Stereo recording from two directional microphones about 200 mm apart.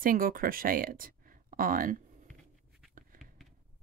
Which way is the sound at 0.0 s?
45° right (ahead or behind).